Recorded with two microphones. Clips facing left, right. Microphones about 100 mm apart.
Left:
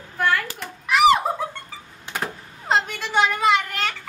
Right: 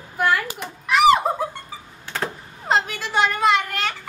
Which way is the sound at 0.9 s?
Centre (ahead or behind).